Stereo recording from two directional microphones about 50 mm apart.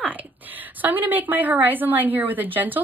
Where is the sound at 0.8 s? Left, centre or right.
Right.